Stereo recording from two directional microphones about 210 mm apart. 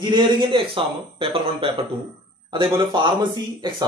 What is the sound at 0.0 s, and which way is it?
A man's voice, 20° right (ahead or behind).